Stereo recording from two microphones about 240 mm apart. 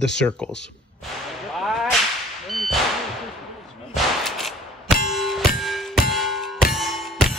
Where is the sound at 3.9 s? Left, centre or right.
Centre.